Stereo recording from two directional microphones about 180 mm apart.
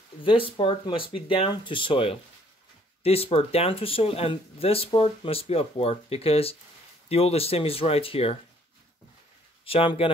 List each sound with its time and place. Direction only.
0.2 s speech: 30° left (ahead or behind)
9.7 s speech: 30° left (ahead or behind)